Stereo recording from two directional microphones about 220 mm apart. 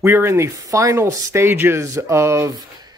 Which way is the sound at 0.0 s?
10° right (ahead or behind).